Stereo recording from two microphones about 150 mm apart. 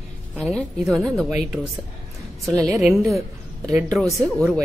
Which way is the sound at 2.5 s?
20° right (ahead or behind).